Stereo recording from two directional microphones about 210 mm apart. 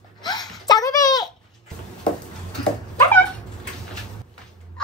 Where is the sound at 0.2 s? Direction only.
20° left (ahead or behind).